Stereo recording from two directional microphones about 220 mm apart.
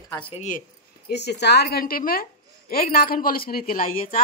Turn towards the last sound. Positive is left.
turn(degrees=40)  # may be behind; listen again after turning